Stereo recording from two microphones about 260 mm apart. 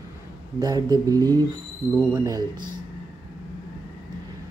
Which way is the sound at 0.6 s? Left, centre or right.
Centre.